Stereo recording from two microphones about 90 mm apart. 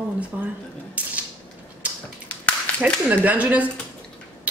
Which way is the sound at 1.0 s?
15° right (ahead or behind).